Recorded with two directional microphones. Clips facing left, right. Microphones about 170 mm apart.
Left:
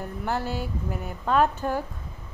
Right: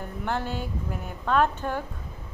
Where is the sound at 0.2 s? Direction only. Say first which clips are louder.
Left 1 dB; 5° left (ahead or behind).